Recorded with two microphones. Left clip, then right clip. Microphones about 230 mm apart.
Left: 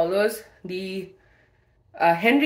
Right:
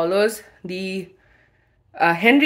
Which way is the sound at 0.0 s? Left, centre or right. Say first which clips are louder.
Right 3 dB; right.